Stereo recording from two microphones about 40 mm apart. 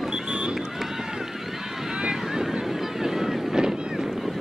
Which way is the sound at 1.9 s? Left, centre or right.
Right.